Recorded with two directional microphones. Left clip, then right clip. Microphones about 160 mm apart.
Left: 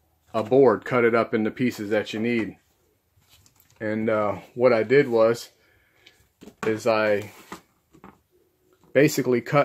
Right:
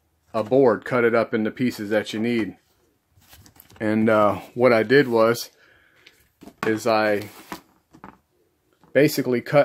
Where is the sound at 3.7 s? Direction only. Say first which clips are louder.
Right 5 dB; 30° right (ahead or behind).